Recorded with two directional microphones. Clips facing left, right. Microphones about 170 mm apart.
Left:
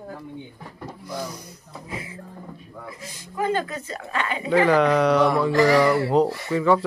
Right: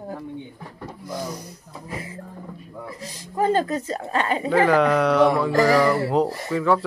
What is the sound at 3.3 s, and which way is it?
Speech, 35° right (ahead or behind).